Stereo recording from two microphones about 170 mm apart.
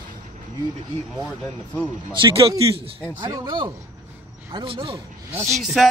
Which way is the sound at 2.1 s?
30° right (ahead or behind).